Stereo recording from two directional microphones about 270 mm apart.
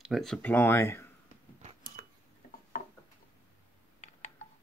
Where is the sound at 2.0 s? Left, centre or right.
Right.